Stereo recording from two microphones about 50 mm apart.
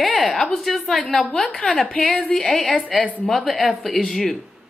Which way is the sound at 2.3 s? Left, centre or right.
Centre.